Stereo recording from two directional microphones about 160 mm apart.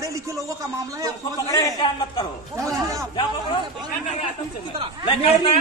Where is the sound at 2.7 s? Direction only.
20° right (ahead or behind).